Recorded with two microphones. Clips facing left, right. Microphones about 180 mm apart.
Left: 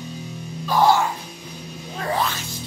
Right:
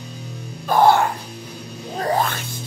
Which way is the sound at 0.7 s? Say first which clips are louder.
Right 3 dB; 55° right (ahead or behind).